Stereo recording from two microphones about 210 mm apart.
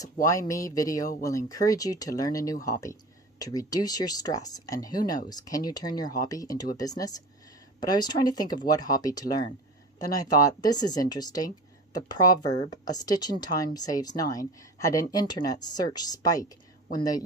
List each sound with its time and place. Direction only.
0.0 s speech: 15° left (ahead or behind)